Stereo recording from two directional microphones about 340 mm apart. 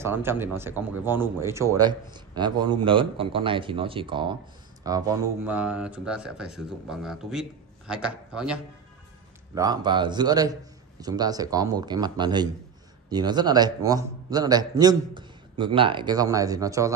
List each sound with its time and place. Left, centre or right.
0.0 s speech: centre
9.6 s speech: centre